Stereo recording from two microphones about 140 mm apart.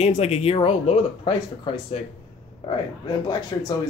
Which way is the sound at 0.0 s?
50° left (ahead or behind).